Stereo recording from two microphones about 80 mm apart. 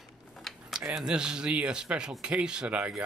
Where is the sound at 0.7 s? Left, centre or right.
Centre.